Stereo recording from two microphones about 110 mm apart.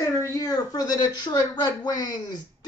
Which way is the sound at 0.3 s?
30° left (ahead or behind).